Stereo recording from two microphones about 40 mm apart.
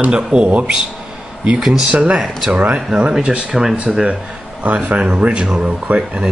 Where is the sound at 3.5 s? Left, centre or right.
Centre.